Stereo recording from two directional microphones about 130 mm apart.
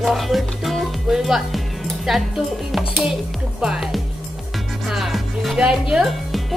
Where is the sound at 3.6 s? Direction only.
5° right (ahead or behind).